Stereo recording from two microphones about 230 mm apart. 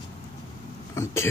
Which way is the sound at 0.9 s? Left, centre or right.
Centre.